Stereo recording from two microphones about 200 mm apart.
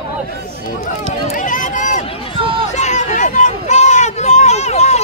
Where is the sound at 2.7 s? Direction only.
35° left (ahead or behind).